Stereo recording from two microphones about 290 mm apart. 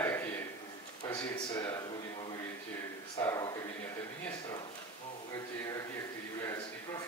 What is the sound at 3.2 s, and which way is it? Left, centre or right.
Speech, centre.